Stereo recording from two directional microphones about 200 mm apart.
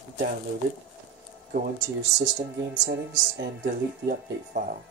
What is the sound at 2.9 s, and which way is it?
Speech, 50° right (ahead or behind).